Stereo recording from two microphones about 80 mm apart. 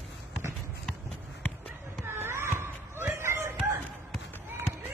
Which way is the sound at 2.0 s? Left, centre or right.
Right.